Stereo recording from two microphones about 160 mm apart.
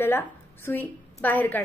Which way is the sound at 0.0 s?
15° left (ahead or behind).